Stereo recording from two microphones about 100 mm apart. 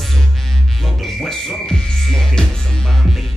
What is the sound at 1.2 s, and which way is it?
Music, 5° left (ahead or behind).